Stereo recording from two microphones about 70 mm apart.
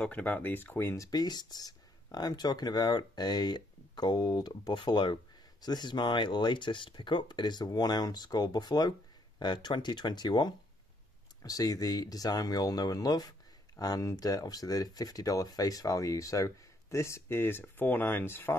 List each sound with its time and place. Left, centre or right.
0.0 s speech: left
0.9 s speech: left
11.4 s speech: left